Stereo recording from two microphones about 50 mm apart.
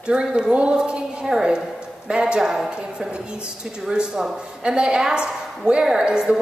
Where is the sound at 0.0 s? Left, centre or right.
Centre.